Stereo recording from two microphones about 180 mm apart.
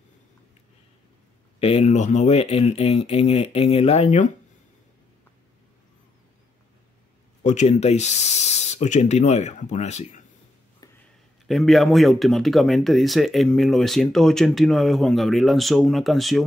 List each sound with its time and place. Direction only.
1.6 s speech: 35° left (ahead or behind)
7.4 s speech: 40° left (ahead or behind)
10.8 s a sound: 20° left (ahead or behind)
11.4 s speech: centre (ahead or behind)